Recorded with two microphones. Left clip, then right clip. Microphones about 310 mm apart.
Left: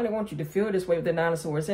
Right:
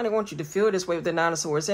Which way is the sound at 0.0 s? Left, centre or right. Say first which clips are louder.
Right 3 dB; centre.